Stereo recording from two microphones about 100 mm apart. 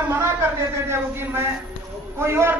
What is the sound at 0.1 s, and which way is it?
A man's voice, 25° right (ahead or behind).